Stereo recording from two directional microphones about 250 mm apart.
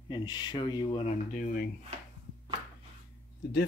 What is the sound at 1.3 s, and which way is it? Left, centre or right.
Speech, left.